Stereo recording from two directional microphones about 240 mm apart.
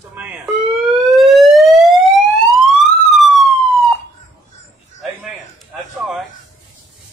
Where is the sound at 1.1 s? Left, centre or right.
Centre.